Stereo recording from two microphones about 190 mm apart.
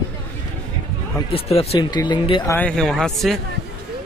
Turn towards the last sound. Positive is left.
turn(degrees=0)  # may be behind; listen again after turning